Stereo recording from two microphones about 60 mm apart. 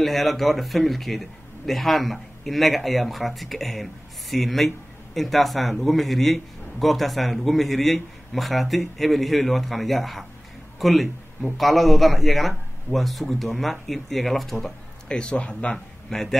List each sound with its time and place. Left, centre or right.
0.0 s speech: centre
15.0 s speech: centre